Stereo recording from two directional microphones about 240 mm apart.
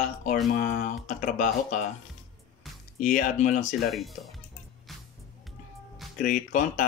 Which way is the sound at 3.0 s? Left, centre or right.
Left.